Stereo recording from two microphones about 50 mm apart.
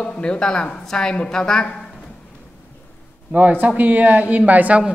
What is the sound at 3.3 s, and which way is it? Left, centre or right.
Speech, right.